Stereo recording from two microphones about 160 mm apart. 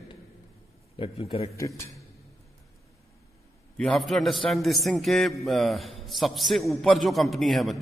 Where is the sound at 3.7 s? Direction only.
Centre (ahead or behind).